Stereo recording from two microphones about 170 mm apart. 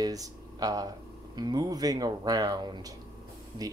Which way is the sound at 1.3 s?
25° right (ahead or behind).